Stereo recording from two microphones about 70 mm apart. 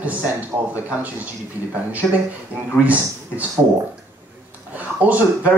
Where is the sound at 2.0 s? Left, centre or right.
Centre.